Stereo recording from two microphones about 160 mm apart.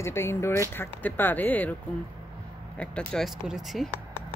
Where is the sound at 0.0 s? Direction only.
15° left (ahead or behind).